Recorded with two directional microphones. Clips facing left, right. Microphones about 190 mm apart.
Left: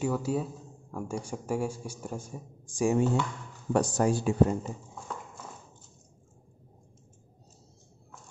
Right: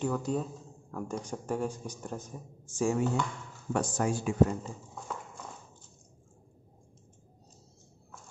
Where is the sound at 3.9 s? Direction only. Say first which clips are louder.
Even; 35° left (ahead or behind).